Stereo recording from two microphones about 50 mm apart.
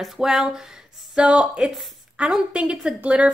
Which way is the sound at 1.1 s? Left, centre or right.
Right.